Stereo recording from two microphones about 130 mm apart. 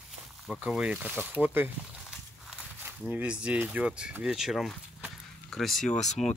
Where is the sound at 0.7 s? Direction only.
5° right (ahead or behind).